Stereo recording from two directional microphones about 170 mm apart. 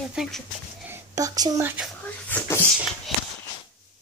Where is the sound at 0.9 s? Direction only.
20° right (ahead or behind).